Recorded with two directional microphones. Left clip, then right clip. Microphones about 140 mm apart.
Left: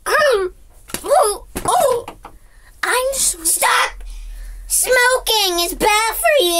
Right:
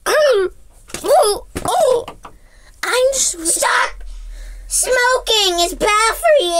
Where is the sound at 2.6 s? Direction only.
30° right (ahead or behind).